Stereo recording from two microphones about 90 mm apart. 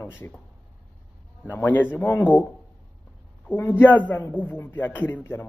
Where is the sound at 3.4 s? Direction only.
20° left (ahead or behind).